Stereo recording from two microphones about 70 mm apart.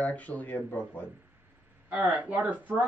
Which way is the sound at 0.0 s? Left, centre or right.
Left.